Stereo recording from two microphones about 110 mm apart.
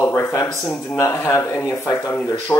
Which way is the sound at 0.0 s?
20° left (ahead or behind).